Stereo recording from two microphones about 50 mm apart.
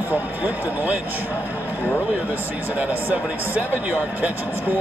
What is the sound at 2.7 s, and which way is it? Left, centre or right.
Speech, right.